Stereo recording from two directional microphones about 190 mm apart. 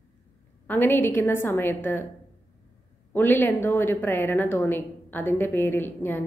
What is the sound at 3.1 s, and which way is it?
A woman's voice, 10° left (ahead or behind).